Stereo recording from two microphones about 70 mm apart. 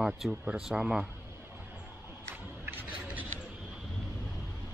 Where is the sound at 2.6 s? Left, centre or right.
Right.